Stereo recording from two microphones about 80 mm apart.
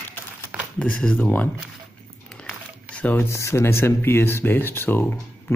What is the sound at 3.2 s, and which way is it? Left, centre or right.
Speech, left.